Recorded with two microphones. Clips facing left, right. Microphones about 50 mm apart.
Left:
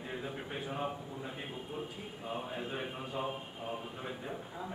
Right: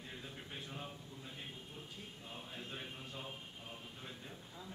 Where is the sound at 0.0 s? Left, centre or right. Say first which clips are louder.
Left 9 dB; left.